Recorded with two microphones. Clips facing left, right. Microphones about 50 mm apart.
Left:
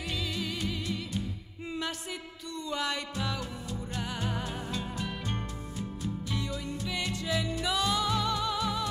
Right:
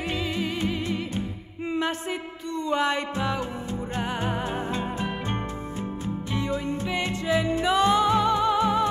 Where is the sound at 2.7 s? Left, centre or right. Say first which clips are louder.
Right 8 dB; right.